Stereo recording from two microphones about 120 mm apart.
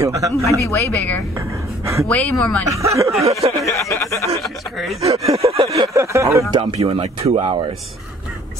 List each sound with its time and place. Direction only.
0.0 s speech: 25° right (ahead or behind)
0.5 s speech: 25° left (ahead or behind)
2.0 s speech: 10° left (ahead or behind)
2.7 s speech: 25° right (ahead or behind)
3.3 s a sound: 60° right (ahead or behind)
3.6 s speech: 25° left (ahead or behind)
4.4 s speech: centre (ahead or behind)
5.0 s a sound: 55° right (ahead or behind)
5.9 s speech: 25° right (ahead or behind)
6.5 s speech: 50° right (ahead or behind)